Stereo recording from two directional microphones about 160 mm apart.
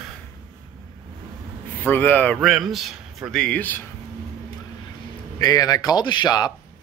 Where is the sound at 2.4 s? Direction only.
Centre (ahead or behind).